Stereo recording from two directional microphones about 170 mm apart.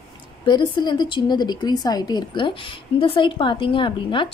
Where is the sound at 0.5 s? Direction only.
25° left (ahead or behind).